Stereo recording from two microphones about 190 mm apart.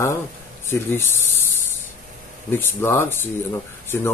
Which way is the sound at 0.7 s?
10° left (ahead or behind).